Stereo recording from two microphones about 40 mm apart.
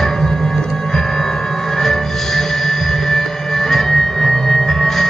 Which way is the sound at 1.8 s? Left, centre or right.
Centre.